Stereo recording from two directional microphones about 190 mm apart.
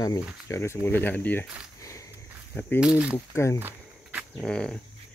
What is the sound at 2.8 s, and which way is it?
Speech, 5° right (ahead or behind).